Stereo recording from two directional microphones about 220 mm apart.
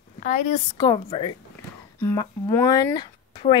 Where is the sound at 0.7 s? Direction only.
20° left (ahead or behind).